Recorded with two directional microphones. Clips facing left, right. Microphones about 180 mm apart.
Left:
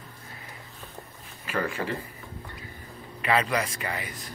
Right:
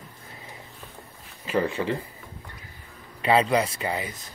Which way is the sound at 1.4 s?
20° right (ahead or behind).